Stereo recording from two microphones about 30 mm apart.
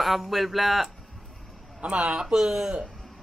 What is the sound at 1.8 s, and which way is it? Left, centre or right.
Speech, right.